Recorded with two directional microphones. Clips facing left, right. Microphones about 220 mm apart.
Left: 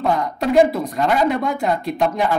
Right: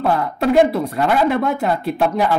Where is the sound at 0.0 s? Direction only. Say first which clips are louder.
Right 2 dB; 5° right (ahead or behind).